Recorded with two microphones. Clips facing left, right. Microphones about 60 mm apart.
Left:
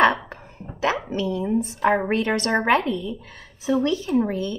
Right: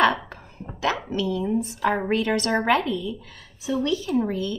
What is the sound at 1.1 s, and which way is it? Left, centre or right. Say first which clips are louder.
A woman's voice: left 1 dB; left.